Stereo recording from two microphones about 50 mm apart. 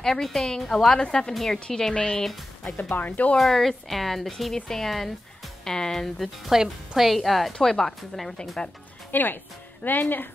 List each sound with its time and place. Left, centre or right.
0.0 s speech: centre
1.3 s speech: centre
2.8 s speech: left
3.3 s speech: centre
6.5 s a woman's voice: centre
7.1 s speech: centre
7.5 s speech: centre
9.1 s speech: left